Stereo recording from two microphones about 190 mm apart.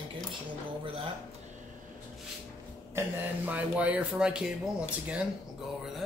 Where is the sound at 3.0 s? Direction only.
10° right (ahead or behind).